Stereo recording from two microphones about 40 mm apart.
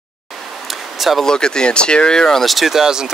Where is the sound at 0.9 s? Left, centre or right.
Centre.